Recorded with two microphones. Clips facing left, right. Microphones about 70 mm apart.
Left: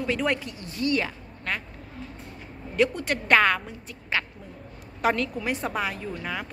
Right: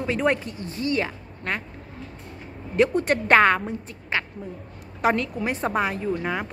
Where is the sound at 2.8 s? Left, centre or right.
Right.